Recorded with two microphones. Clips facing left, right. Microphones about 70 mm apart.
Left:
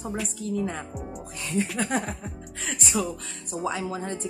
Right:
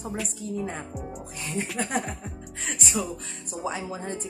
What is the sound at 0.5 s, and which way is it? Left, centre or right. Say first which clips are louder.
Speech: left 3 dB; right.